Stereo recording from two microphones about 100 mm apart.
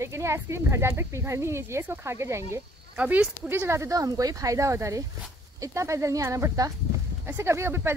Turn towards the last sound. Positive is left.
turn(degrees=-25)  # may be behind; listen again after turning